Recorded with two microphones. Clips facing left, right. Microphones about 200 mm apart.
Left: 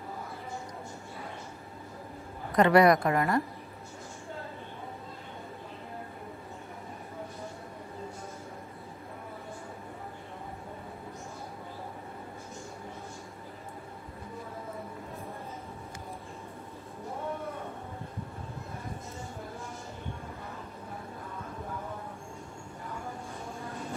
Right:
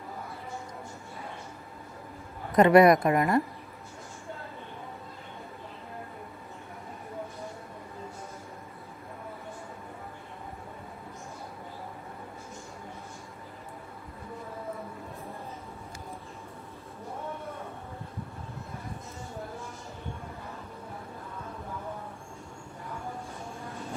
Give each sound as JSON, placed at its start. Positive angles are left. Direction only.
{"t": 2.5, "sound": "a woman's voice", "side_deg": -20}